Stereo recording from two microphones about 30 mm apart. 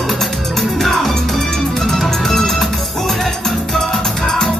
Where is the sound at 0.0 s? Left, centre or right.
Centre.